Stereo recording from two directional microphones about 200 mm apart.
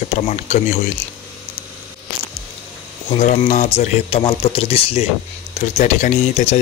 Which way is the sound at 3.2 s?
35° left (ahead or behind).